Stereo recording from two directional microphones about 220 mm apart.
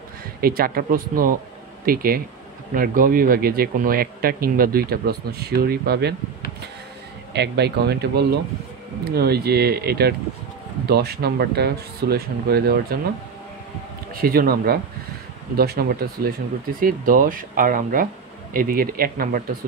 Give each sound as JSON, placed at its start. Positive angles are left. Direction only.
{"t": 0.4, "sound": "speech", "side_deg": -45}
{"t": 7.3, "sound": "speech", "side_deg": -50}
{"t": 14.1, "sound": "speech", "side_deg": -40}